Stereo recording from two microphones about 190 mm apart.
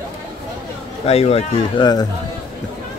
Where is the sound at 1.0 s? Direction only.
35° left (ahead or behind).